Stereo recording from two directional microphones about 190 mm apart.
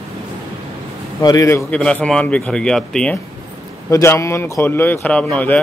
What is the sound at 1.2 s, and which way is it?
A man's voice, 15° left (ahead or behind).